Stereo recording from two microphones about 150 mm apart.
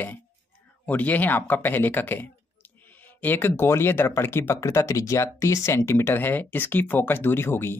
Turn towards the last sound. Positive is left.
turn(degrees=15)  # may be behind; listen again after turning